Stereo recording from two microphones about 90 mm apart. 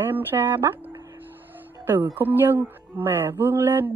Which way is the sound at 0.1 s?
25° right (ahead or behind).